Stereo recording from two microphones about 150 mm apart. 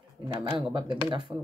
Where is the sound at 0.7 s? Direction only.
30° right (ahead or behind).